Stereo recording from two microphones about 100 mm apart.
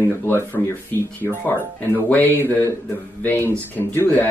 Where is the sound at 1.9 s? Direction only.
20° left (ahead or behind).